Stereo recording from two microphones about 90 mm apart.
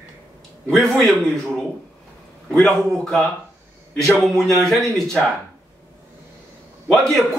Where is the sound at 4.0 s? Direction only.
35° right (ahead or behind).